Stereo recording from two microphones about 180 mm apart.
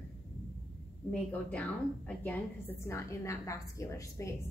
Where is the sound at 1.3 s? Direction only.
5° left (ahead or behind).